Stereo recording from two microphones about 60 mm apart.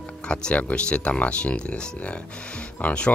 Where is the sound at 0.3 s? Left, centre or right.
Left.